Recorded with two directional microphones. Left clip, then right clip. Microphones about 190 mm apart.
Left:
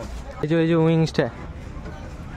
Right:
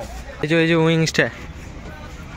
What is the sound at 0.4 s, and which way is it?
Speech, 5° left (ahead or behind).